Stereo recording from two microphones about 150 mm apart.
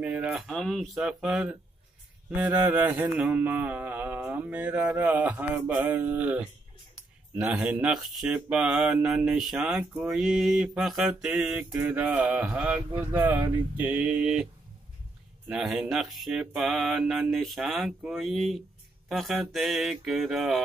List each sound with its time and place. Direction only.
0.0 s speech: 10° right (ahead or behind)
2.3 s mantra: 10° right (ahead or behind)
7.0 s speech: 5° right (ahead or behind)
11.8 s mantra: 10° right (ahead or behind)
15.4 s speech: 5° right (ahead or behind)